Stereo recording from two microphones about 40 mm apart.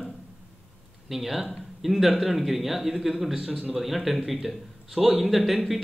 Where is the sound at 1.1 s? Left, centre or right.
Centre.